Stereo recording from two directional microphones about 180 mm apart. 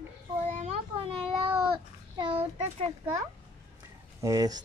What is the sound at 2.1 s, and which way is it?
Mantra, 30° right (ahead or behind).